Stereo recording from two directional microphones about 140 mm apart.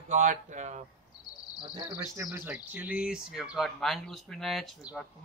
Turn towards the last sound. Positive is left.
turn(degrees=0)  # may be behind; listen again after turning